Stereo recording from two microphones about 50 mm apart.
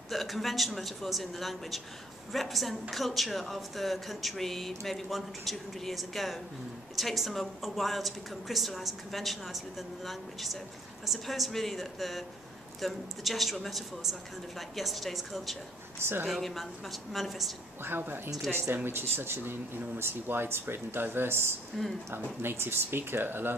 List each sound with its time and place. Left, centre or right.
0.1 s speech: centre
16.0 s speech: right
16.3 s speech: centre
17.8 s speech: right